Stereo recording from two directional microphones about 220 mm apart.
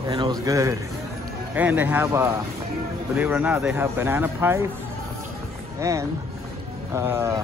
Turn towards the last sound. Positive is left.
turn(degrees=-10)  # may be behind; listen again after turning